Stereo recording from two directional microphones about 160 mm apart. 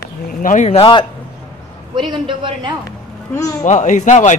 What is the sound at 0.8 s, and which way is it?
Speech, 30° left (ahead or behind).